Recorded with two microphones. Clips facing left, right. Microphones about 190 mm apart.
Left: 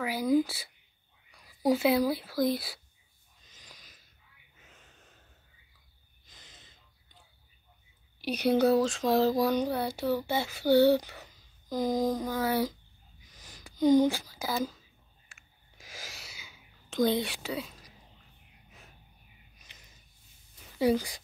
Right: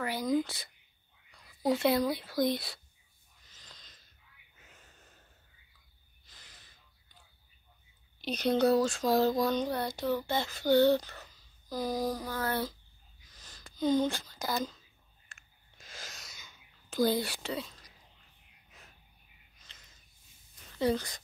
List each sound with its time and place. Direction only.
0.0 s speech: 5° left (ahead or behind)
3.3 s a sound: 15° left (ahead or behind)
4.6 s snort: centre (ahead or behind)
6.2 s gasp: 20° left (ahead or behind)
8.2 s speech: 10° left (ahead or behind)
13.2 s a sound: 15° left (ahead or behind)
16.9 s speech: 5° right (ahead or behind)
19.6 s snort: 15° left (ahead or behind)
20.5 s a sound: 10° left (ahead or behind)